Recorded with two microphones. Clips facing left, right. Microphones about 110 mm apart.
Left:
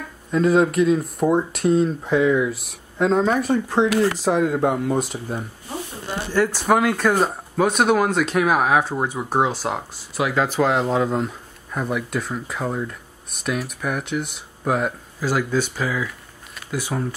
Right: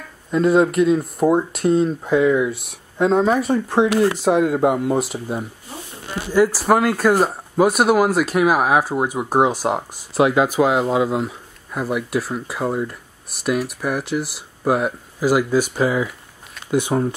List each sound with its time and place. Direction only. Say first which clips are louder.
0.3 s speech: right 2 dB; centre (ahead or behind)
16.7 s speech: right 7 dB; 20° right (ahead or behind)